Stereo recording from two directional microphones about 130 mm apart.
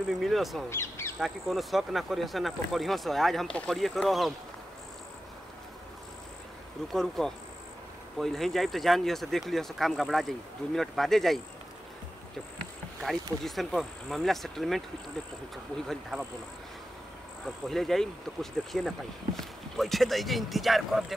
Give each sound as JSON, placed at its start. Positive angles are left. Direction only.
{"t": 0.1, "sound": "speech", "side_deg": 0}
{"t": 0.7, "sound": "speech", "side_deg": 20}
{"t": 1.2, "sound": "speech", "side_deg": 0}
{"t": 6.9, "sound": "speech", "side_deg": 5}
{"t": 13.0, "sound": "speech", "side_deg": 0}
{"t": 17.6, "sound": "speech", "side_deg": 5}